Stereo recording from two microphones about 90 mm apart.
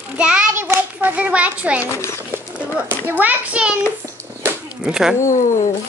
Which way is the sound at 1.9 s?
30° left (ahead or behind).